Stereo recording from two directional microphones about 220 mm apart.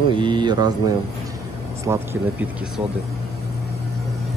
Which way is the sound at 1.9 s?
10° right (ahead or behind).